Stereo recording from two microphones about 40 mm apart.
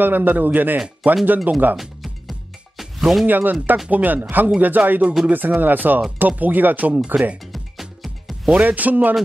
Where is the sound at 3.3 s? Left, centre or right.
Right.